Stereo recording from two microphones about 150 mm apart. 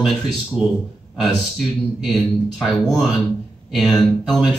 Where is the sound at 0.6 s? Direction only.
5° right (ahead or behind).